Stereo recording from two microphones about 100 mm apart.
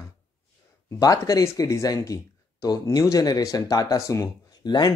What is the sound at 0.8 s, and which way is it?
Speech, 35° left (ahead or behind).